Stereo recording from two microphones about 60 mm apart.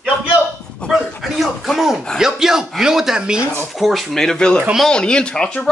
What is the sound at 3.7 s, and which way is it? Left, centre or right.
Speech, centre.